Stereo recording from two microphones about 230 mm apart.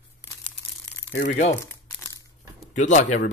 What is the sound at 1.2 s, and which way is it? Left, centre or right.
Speech, left.